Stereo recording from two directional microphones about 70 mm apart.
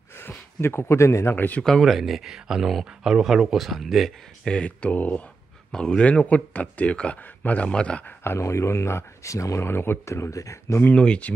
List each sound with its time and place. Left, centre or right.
0.6 s speech: left
1.3 s speech: left
1.8 s speech: centre
4.5 s speech: centre
8.2 s speech: left
11.0 s speech: centre